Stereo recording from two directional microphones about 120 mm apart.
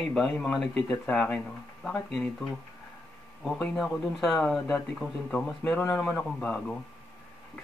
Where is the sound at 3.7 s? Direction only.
Centre (ahead or behind).